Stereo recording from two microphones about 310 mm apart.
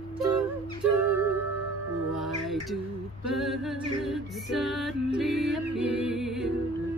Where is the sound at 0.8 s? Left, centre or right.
Right.